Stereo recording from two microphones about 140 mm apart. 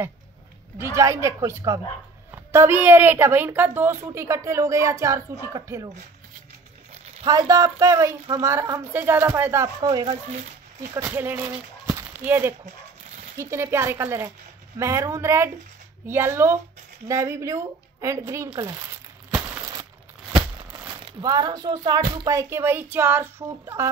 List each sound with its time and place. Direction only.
0.7 s a woman's voice: 20° right (ahead or behind)
7.2 s a woman's voice: 25° right (ahead or behind)
9.8 s speech: 30° right (ahead or behind)
10.8 s a woman's voice: 20° right (ahead or behind)
19.6 s a sound: 25° right (ahead or behind)
20.3 s speech: 30° right (ahead or behind)